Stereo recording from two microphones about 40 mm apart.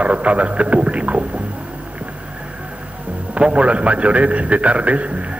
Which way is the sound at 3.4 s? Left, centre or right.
Right.